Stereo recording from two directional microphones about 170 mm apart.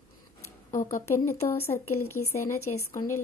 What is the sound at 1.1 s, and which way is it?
Speech, 15° left (ahead or behind).